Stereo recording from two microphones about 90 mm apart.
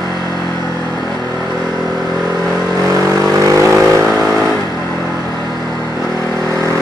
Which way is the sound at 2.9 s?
40° right (ahead or behind).